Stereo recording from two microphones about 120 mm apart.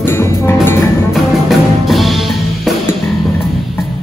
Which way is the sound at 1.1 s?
Centre (ahead or behind).